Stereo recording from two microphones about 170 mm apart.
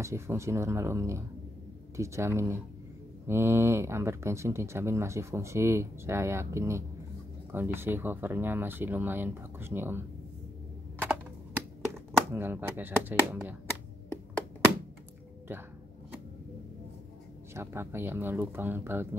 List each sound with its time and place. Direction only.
0.0 s speech: 15° right (ahead or behind)
11.0 s computer keyboard: 10° right (ahead or behind)
12.3 s speech: 15° right (ahead or behind)
17.6 s speech: 15° right (ahead or behind)